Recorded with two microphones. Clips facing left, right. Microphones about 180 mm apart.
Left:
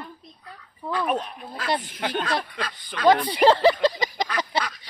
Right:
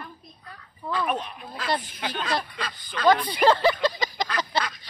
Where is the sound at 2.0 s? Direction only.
55° left (ahead or behind).